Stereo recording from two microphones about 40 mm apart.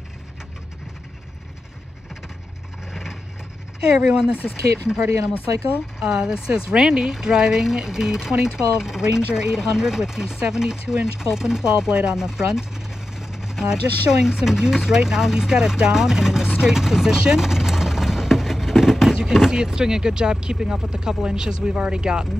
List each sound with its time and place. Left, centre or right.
2.9 s vehicle: centre
3.9 s chopping: centre
4.4 s speech: left
5.9 s chopping: centre
13.2 s vehicle: centre
14.2 s chopping: centre
17.2 s a sound: centre
19.1 s speech: centre